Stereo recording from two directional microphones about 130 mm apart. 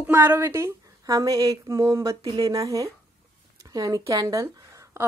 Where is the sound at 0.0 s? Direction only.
15° right (ahead or behind).